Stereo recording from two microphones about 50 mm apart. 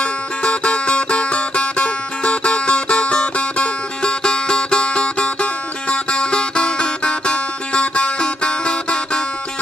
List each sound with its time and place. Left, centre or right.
0.0 s music: left